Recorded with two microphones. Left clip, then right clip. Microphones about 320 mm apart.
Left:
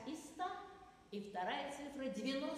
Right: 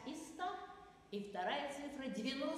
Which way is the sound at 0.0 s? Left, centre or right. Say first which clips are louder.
Left 1 dB; right.